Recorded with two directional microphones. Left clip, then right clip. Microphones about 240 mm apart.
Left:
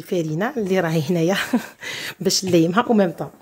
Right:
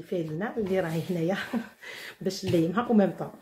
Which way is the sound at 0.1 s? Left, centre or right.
Left.